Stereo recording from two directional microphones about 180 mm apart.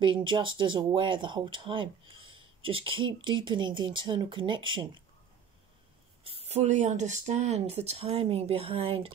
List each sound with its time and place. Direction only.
0.0 s speech: 25° right (ahead or behind)
6.2 s speech: 35° right (ahead or behind)